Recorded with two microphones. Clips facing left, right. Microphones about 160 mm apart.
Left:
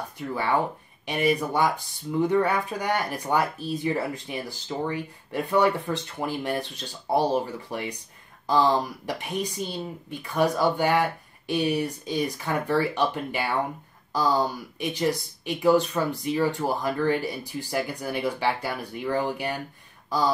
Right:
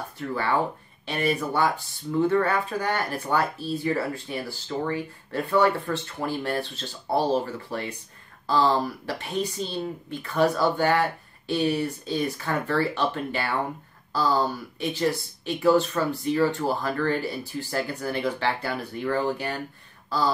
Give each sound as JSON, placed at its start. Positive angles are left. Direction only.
{"t": 0.3, "sound": "speech", "side_deg": 15}